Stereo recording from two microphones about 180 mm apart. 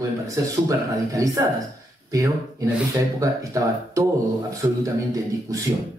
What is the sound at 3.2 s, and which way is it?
A man's voice, 20° right (ahead or behind).